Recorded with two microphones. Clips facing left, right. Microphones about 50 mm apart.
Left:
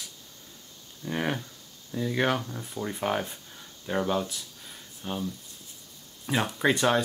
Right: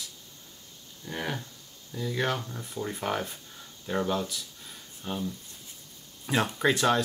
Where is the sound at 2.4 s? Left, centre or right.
Centre.